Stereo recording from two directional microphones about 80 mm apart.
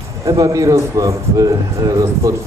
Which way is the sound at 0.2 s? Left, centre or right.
Right.